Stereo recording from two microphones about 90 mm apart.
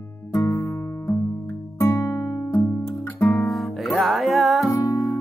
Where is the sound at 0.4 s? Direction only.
25° left (ahead or behind).